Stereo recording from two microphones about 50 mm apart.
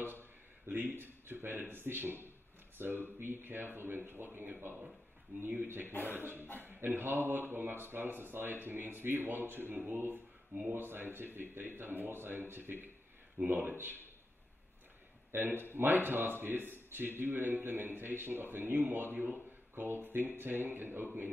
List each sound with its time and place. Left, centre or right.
0.2 s speech: right
5.9 s speech: left
6.1 s speech: right
15.3 s speech: right